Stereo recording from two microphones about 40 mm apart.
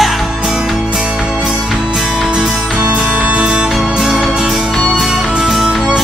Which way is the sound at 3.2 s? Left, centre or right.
Right.